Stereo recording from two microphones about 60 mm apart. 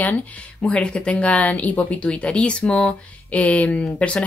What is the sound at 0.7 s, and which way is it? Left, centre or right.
Speech, centre.